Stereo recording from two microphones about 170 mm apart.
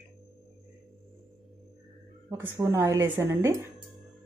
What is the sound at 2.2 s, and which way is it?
Speech, 15° right (ahead or behind).